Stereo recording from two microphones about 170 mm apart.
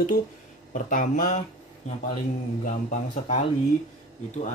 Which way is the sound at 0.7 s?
50° left (ahead or behind).